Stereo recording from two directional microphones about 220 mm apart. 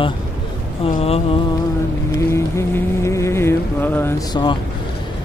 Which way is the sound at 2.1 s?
10° left (ahead or behind).